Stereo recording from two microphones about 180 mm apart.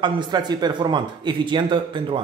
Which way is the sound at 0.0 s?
25° right (ahead or behind).